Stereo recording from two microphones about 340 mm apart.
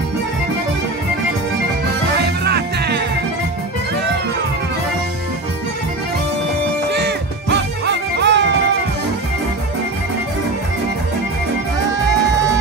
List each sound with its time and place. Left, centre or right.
2.1 s music: right
6.9 s music: right